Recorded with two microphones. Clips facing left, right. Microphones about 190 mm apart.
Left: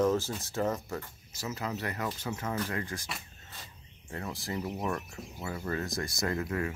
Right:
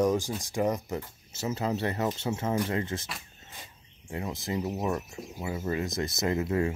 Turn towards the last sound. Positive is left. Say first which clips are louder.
# right 5 dB
turn(degrees=-25)  # may be behind; listen again after turning